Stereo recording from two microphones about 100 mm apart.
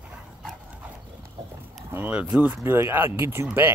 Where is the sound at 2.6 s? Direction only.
25° right (ahead or behind).